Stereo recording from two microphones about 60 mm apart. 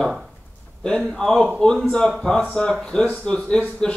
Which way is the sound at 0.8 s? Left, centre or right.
Centre.